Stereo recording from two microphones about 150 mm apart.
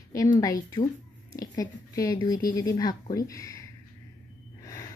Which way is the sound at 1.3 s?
25° left (ahead or behind).